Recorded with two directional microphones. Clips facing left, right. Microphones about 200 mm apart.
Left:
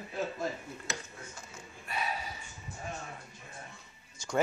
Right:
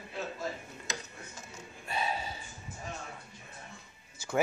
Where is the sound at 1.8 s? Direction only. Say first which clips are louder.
Right 2 dB; 25° right (ahead or behind).